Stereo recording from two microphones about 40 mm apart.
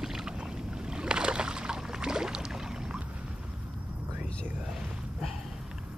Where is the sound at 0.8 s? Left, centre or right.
Right.